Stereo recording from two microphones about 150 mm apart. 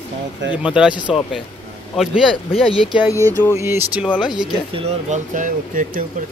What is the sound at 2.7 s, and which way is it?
Speech, 35° left (ahead or behind).